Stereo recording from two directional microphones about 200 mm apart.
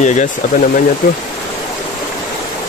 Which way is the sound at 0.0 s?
35° left (ahead or behind).